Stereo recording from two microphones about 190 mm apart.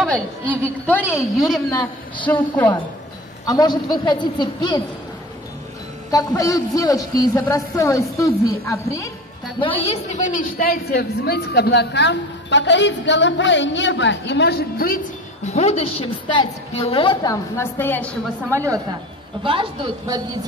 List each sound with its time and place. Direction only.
0.0 s a woman's voice: 5° left (ahead or behind)
3.4 s a woman's voice: 20° left (ahead or behind)
6.1 s speech: 20° left (ahead or behind)
9.6 s a woman's voice: 25° left (ahead or behind)
10.0 s a woman's voice: 40° left (ahead or behind)
15.4 s a woman's voice: 35° left (ahead or behind); by 18.1 s 10° left (ahead or behind)
18.5 s a woman's voice: 15° right (ahead or behind)
19.4 s a man's voice: 25° right (ahead or behind)